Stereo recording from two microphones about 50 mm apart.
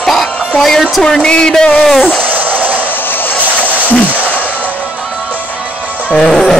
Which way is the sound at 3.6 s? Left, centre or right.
Left.